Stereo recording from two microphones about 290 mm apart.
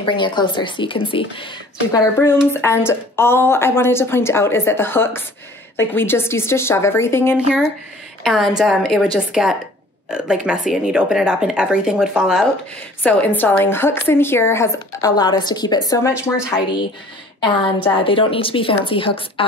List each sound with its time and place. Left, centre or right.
0.0 s a woman's voice: centre